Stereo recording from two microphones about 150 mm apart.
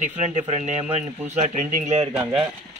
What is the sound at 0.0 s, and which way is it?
Speech, 50° right (ahead or behind).